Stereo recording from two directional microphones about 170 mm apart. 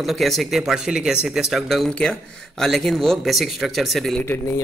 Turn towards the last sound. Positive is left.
turn(degrees=15)  # may be behind; listen again after turning